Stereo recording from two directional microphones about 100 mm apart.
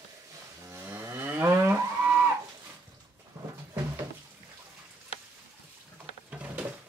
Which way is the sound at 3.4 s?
25° right (ahead or behind).